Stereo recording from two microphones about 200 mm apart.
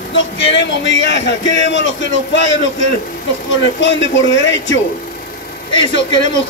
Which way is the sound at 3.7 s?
65° left (ahead or behind).